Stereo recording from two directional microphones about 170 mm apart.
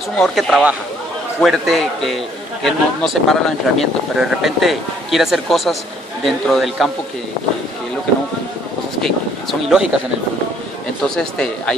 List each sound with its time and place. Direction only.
0.2 s speech: centre (ahead or behind)
9.0 s speech: centre (ahead or behind)
11.1 s speech: 5° left (ahead or behind)